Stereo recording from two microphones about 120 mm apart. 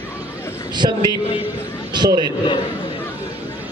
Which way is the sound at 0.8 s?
40° right (ahead or behind).